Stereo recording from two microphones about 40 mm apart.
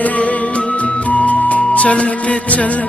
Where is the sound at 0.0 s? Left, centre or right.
Left.